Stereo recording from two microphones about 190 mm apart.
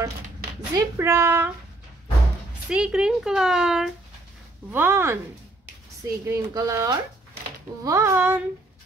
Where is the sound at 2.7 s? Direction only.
5° right (ahead or behind).